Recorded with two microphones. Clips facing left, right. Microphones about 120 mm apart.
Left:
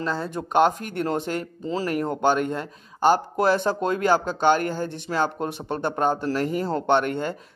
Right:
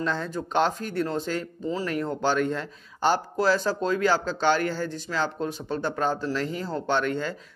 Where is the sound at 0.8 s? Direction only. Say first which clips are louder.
Left 2 dB; 55° left (ahead or behind).